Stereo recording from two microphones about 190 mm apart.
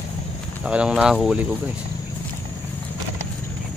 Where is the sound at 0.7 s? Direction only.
5° right (ahead or behind).